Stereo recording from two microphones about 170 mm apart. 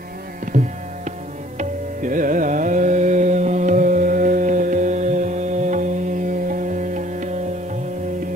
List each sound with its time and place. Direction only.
0.5 s music: 45° right (ahead or behind)
1.6 s carnatic music: 50° right (ahead or behind)
6.5 s music: 50° right (ahead or behind)